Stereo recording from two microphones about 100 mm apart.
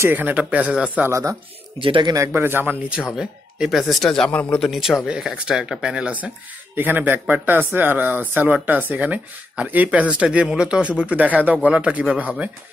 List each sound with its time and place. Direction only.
0.0 s speech: 20° right (ahead or behind)
1.8 s speech: 55° right (ahead or behind)
2.1 s speech: 25° right (ahead or behind)
3.2 s speech: 5° right (ahead or behind); by 4.6 s 15° left (ahead or behind)
4.6 s speech: centre (ahead or behind)